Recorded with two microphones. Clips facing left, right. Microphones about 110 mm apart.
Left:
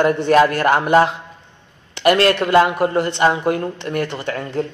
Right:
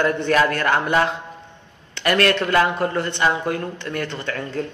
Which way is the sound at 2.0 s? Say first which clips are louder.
Left 4 dB; 25° left (ahead or behind).